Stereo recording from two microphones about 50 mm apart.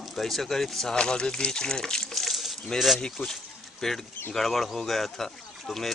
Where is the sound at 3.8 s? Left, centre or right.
Centre.